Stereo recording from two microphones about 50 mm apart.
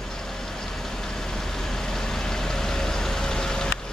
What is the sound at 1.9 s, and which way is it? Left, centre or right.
Vehicle, centre.